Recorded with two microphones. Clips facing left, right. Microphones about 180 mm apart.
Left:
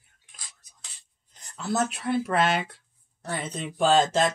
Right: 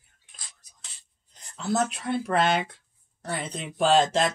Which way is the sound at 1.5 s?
5° left (ahead or behind).